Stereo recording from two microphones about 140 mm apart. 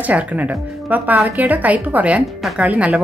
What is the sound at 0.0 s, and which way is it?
Speech, 10° right (ahead or behind).